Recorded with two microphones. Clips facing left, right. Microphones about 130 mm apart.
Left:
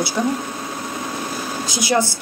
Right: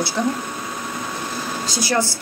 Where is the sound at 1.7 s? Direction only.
15° left (ahead or behind).